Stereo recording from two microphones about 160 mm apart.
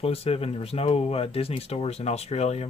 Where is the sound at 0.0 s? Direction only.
35° left (ahead or behind).